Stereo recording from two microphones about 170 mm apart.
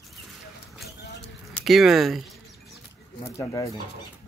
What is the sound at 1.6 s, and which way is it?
Speech, centre (ahead or behind).